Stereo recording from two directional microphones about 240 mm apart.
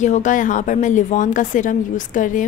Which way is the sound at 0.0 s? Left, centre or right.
Left.